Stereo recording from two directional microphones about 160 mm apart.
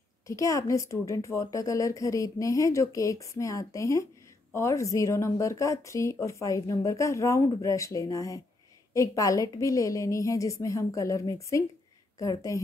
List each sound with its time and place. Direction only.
0.3 s speech: 20° left (ahead or behind)